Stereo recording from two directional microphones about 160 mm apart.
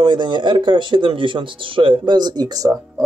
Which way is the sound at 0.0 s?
30° right (ahead or behind).